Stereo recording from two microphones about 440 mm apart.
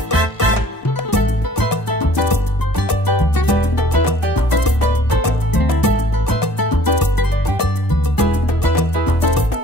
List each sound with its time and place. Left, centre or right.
0.1 s music: left